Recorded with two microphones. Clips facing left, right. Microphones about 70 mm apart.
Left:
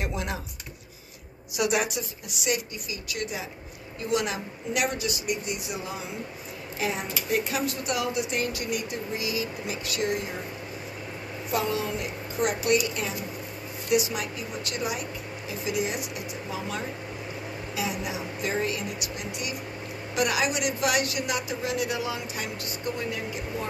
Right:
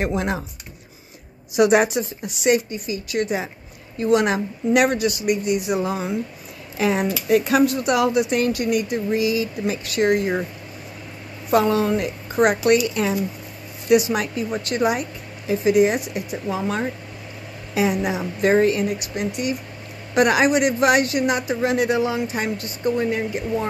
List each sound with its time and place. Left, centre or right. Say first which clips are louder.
0.0 s speech: right 9 dB; right
1.6 s speech: right 10 dB; right
6.8 s speech: right 9 dB; right
11.5 s speech: right 10 dB; right
13.8 s speech: right 8 dB; right